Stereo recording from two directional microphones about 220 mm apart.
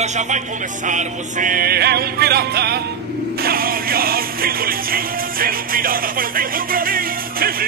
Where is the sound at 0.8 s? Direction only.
35° right (ahead or behind).